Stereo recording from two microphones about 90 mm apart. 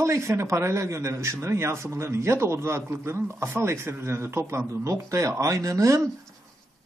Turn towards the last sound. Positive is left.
turn(degrees=-35)  # may be behind; listen again after turning